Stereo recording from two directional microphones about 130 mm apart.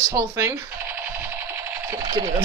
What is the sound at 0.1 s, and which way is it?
Speech, 20° right (ahead or behind).